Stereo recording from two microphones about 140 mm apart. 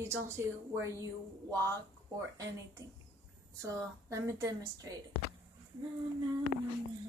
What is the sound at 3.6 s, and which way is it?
A woman's voice, 25° right (ahead or behind).